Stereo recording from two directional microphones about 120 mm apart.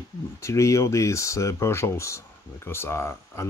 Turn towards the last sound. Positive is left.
turn(degrees=20)  # may be behind; listen again after turning